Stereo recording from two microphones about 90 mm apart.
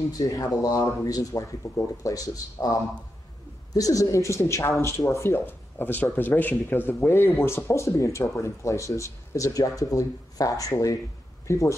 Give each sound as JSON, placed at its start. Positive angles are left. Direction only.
{"t": 0.2, "sound": "speech", "side_deg": 40}